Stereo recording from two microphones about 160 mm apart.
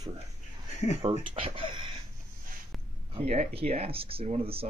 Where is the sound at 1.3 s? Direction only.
35° right (ahead or behind).